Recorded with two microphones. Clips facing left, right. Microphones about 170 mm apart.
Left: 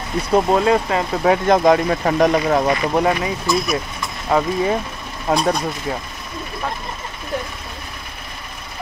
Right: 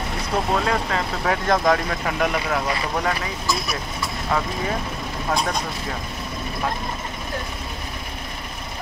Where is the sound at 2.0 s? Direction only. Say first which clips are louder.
Left 8 dB; 35° left (ahead or behind).